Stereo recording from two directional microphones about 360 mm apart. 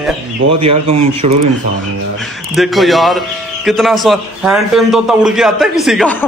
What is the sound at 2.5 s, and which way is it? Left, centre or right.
A man's voice, centre.